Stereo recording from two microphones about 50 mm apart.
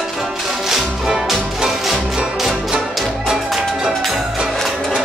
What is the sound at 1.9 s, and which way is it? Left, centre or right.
Music, centre.